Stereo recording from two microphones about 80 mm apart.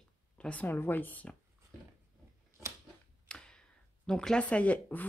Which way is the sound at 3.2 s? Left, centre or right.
Centre.